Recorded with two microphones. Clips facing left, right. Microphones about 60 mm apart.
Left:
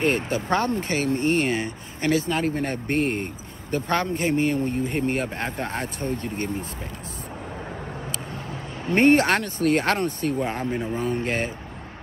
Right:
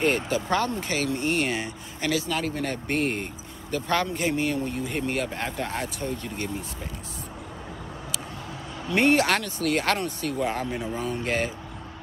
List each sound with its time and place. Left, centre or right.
0.0 s speech: left
8.5 s speech: left